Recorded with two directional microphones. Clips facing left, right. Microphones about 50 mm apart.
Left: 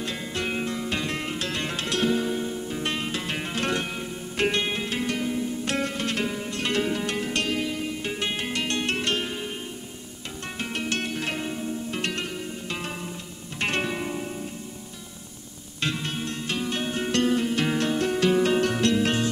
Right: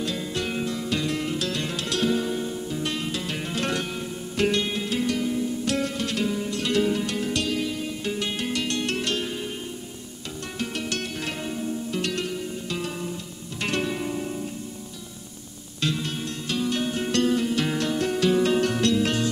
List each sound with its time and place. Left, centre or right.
0.0 s music: left
10.6 s music: left
15.8 s music: left